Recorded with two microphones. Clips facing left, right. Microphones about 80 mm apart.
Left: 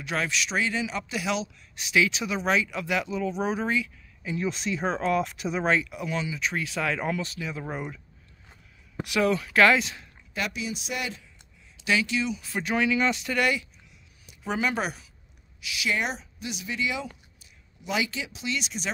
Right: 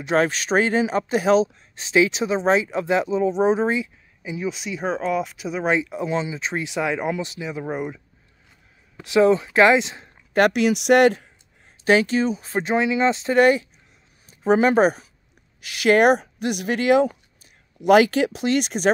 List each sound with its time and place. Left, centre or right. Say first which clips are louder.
0.2 s speech: right 6 dB; right
4.2 s speech: right 2 dB; centre
5.7 s speech: right 6 dB; right
9.0 s speech: right 8 dB; right
10.3 s speech: right 14 dB; right
11.8 s speech: right 8 dB; right